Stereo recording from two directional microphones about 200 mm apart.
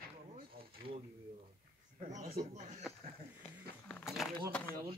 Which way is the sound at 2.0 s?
35° right (ahead or behind).